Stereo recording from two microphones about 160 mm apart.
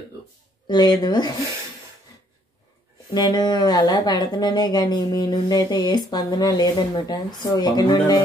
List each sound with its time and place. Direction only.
0.7 s speech: 25° left (ahead or behind)
3.2 s speech: 25° left (ahead or behind)